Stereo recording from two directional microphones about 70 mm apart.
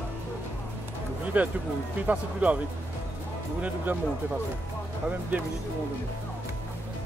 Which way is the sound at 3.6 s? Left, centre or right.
Right.